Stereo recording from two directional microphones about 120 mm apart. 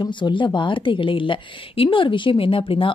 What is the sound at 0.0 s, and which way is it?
Speech, 40° left (ahead or behind).